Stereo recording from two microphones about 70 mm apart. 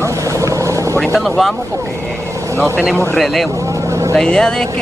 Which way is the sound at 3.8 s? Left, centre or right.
Right.